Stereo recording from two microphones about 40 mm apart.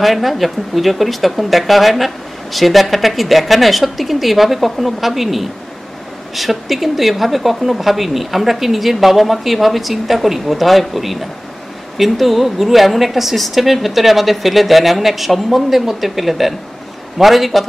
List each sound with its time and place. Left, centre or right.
0.0 s speech: centre